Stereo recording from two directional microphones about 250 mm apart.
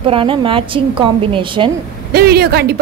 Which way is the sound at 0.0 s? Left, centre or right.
Right.